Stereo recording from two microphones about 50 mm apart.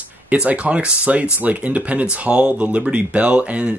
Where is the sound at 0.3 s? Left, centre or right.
Right.